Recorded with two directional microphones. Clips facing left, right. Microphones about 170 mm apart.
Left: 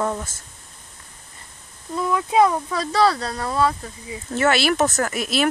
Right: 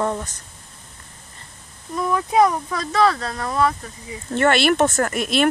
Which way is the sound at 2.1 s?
20° left (ahead or behind).